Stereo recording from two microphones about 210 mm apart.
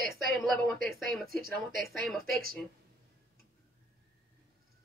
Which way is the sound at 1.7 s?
45° right (ahead or behind).